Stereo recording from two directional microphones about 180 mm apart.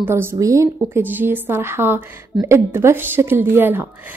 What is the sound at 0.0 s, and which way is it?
A woman's voice, 15° right (ahead or behind).